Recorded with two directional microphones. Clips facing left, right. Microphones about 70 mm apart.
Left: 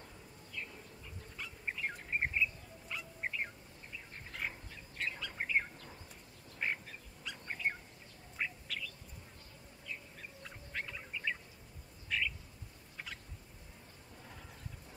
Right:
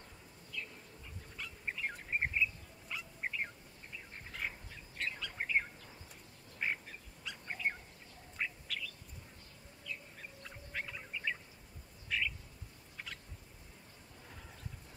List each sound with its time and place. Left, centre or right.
0.5 s insect: left
1.3 s bird: centre
2.0 s chirp: centre
2.9 s bird: centre
6.6 s duck: centre
7.2 s bird: centre
9.9 s bird: left
10.4 s bird: centre
12.9 s fowl: centre